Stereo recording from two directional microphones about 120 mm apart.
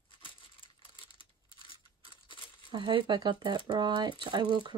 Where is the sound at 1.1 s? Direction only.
45° left (ahead or behind).